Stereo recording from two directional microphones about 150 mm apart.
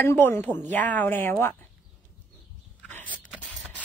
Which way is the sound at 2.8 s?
10° left (ahead or behind).